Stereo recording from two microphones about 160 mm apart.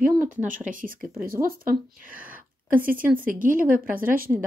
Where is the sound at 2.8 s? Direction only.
60° right (ahead or behind).